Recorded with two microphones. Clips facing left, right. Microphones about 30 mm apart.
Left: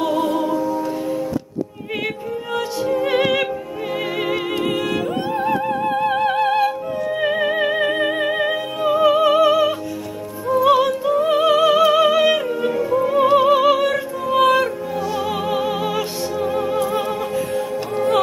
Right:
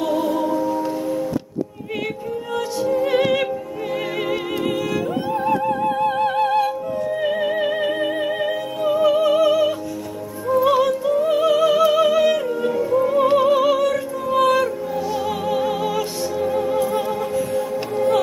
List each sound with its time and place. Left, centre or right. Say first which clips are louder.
0.6 s music: even; centre
2.5 s music: even; left
3.1 s music: left 1 dB; centre
5.3 s music: right 1 dB; left
10.5 s music: left 1 dB; centre
15.4 s music: even; left